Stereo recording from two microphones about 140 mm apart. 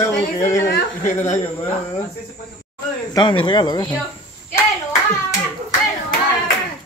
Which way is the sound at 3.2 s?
35° left (ahead or behind).